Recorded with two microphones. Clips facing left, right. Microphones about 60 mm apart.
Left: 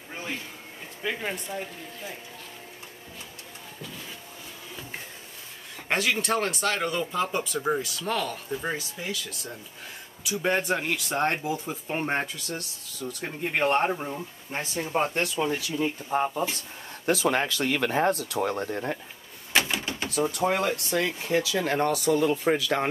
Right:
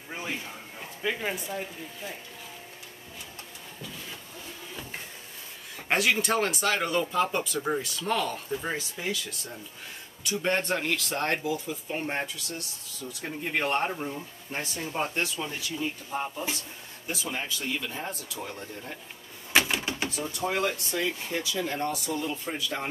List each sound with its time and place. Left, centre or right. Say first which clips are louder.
0.1 s a sound: even; centre
1.0 s speech: even; centre
5.9 s speech: right 1 dB; centre
11.1 s speech: left 2 dB; left
15.0 s speech: left 4 dB; left
17.0 s speech: left 10 dB; left
19.5 s a sound: right 1 dB; centre
20.2 s speech: left 6 dB; left
20.7 s speech: left 3 dB; left